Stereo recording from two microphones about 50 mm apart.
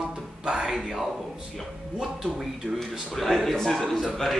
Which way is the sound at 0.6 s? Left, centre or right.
Centre.